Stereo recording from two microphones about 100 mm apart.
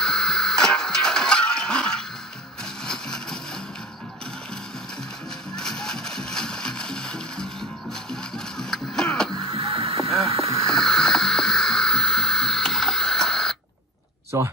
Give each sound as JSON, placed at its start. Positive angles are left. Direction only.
{"t": 0.0, "sound": "music", "side_deg": 5}
{"t": 2.9, "sound": "vehicle", "side_deg": 5}
{"t": 5.6, "sound": "music", "side_deg": 5}
{"t": 9.5, "sound": "boat", "side_deg": -65}
{"t": 10.7, "sound": "a sound", "side_deg": 5}
{"t": 14.3, "sound": "a sound", "side_deg": -30}